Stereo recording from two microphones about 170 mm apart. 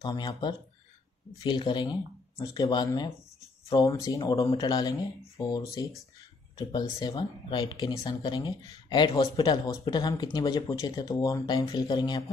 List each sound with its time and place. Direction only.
0.0 s speech: 25° left (ahead or behind)